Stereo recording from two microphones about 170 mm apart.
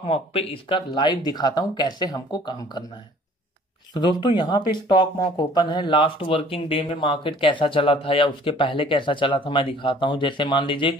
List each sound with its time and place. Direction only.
0.0 s speech: 35° left (ahead or behind)
3.9 s speech: 25° left (ahead or behind)